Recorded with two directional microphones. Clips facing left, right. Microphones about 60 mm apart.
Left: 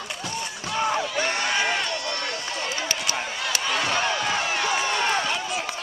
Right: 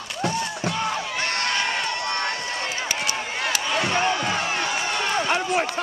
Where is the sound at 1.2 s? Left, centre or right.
Centre.